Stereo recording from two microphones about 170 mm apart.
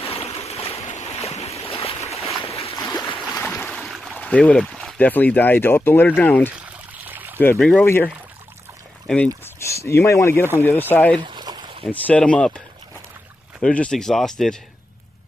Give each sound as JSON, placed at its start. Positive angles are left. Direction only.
{"t": 0.0, "sound": "boat", "side_deg": 35}
{"t": 2.7, "sound": "boat", "side_deg": 20}
{"t": 3.0, "sound": "boat", "side_deg": 0}
{"t": 3.6, "sound": "speech", "side_deg": 0}
{"t": 6.9, "sound": "pour", "side_deg": -10}
{"t": 7.3, "sound": "speech", "side_deg": 10}
{"t": 11.1, "sound": "a sound", "side_deg": -25}
{"t": 11.9, "sound": "speech", "side_deg": 5}